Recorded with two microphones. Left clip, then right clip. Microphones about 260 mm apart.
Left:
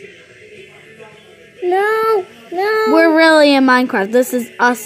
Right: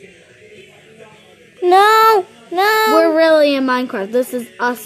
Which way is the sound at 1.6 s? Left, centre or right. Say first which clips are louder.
Right 5 dB; right.